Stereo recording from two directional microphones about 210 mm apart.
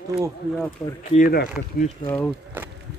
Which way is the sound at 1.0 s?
40° left (ahead or behind).